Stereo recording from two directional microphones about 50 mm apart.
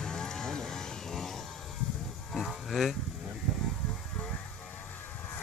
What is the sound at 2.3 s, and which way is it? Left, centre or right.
Livestock, centre.